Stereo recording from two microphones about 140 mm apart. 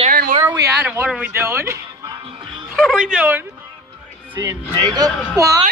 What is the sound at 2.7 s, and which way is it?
Speech, 5° left (ahead or behind).